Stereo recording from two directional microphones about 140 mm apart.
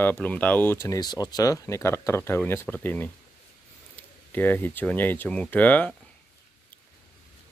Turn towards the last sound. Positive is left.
turn(degrees=10)  # may be behind; listen again after turning